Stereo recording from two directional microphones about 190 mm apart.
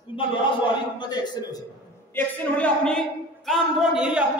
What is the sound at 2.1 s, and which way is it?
Speech, 10° left (ahead or behind).